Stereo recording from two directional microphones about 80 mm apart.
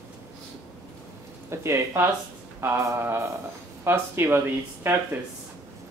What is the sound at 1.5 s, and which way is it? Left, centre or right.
Speech, right.